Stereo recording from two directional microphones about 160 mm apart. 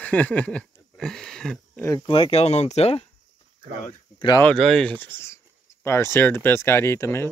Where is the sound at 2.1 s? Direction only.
35° left (ahead or behind).